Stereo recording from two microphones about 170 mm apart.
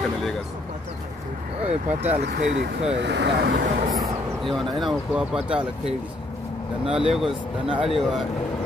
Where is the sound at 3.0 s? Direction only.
90° right.